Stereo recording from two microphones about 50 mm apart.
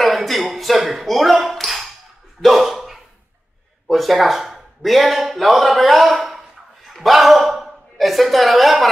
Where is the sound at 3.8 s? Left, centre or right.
Centre.